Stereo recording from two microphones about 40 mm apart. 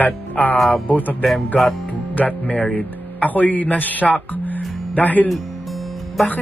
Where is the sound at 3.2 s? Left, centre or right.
Left.